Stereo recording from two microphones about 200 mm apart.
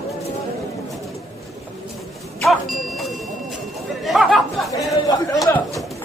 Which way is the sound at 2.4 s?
Centre (ahead or behind).